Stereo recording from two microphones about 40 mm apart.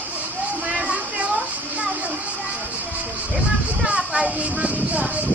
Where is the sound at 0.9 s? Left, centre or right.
Right.